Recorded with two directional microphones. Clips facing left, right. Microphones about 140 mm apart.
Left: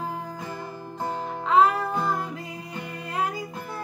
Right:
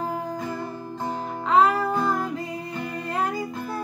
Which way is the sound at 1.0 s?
Centre (ahead or behind).